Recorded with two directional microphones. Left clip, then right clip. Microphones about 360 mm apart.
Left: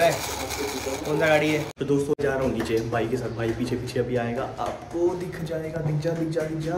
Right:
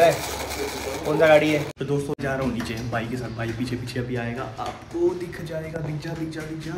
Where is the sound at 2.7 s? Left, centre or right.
Centre.